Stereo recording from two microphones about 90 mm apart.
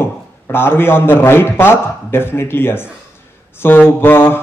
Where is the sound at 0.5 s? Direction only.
25° left (ahead or behind).